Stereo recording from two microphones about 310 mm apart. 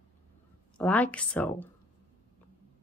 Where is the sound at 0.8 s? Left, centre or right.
Centre.